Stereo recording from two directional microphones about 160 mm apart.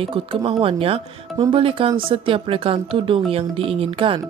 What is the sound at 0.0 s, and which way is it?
Speech, 35° right (ahead or behind).